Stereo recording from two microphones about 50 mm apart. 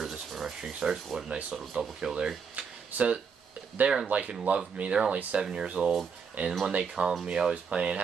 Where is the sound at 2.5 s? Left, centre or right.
Right.